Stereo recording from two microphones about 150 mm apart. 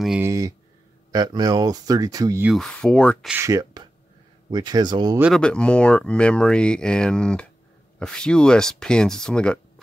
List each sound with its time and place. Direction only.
0.2 s a sound: 20° right (ahead or behind)
1.1 s speech: 25° right (ahead or behind)
2.4 s speech: centre (ahead or behind)
3.3 s speech: 20° right (ahead or behind)
5.3 s speech: 5° left (ahead or behind)